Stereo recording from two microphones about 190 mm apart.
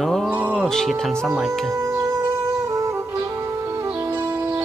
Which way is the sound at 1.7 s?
15° right (ahead or behind).